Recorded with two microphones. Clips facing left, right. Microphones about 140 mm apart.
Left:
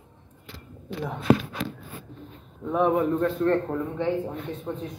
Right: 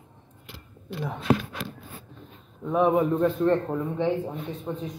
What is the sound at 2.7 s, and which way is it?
A man's voice, 10° right (ahead or behind).